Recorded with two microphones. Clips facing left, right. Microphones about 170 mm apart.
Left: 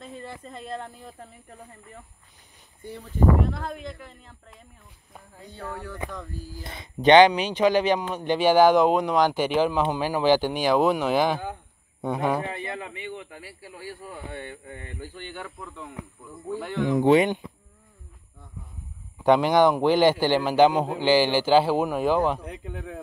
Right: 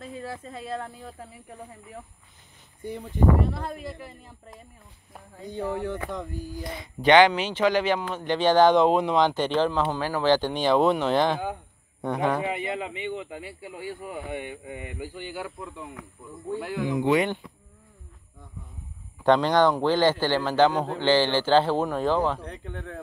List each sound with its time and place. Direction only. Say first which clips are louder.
0.0 s speech: right 3 dB; 5° right (ahead or behind)
2.8 s a man's voice: right 4 dB; 15° right (ahead or behind)
3.4 s a man's voice: even; centre (ahead or behind); by 6.6 s 20° right (ahead or behind)
6.6 s a man's voice: left 4 dB; 25° left (ahead or behind); by 12.4 s 10° left (ahead or behind)
12.4 s a man's voice: right 3 dB; 15° right (ahead or behind)
17.2 s speech: left 3 dB; 20° left (ahead or behind)
19.2 s a man's voice: left 1 dB; 10° left (ahead or behind)